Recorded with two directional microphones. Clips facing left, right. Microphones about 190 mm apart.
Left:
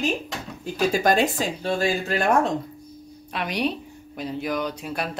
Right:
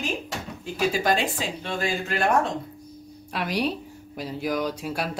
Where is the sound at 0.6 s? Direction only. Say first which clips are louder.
Left 3 dB; 45° left (ahead or behind).